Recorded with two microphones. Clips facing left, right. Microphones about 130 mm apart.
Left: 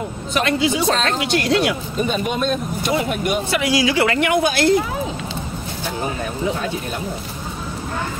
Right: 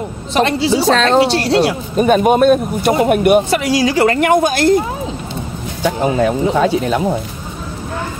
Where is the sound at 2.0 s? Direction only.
55° right (ahead or behind).